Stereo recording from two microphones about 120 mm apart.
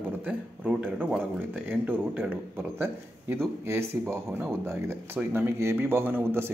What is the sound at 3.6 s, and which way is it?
A man's voice, 20° right (ahead or behind).